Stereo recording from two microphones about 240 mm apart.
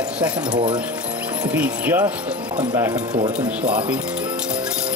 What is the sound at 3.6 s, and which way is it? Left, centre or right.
Speech, centre.